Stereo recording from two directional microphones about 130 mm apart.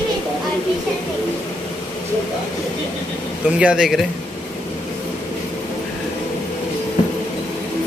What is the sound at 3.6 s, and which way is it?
Speech, 5° right (ahead or behind).